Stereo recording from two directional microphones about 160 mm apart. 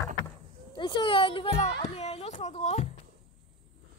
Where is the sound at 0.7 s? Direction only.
30° left (ahead or behind); by 2.9 s 45° left (ahead or behind).